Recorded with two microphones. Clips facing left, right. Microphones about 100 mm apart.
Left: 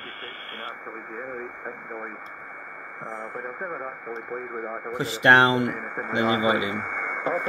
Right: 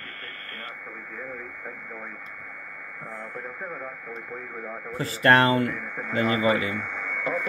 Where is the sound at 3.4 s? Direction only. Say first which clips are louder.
Left 3 dB; 40° left (ahead or behind).